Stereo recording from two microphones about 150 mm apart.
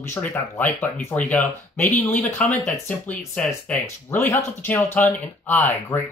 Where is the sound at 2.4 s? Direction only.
10° left (ahead or behind).